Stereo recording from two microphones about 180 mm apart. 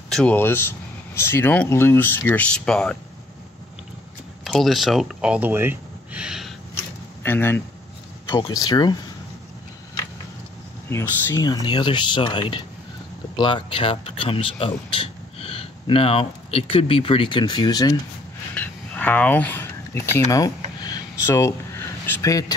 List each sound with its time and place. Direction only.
0.1 s speech: 5° left (ahead or behind)
4.5 s speech: centre (ahead or behind)
7.2 s speech: 10° left (ahead or behind)
8.3 s speech: 20° left (ahead or behind)
10.9 s speech: 15° left (ahead or behind)
18.5 s a sound: 10° left (ahead or behind)